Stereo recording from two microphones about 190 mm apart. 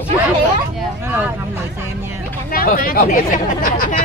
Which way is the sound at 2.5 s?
50° left (ahead or behind).